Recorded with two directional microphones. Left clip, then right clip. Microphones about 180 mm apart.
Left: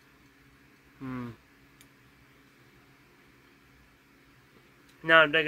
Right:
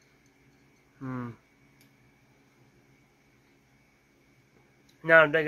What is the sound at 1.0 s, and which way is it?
Speech, 20° left (ahead or behind).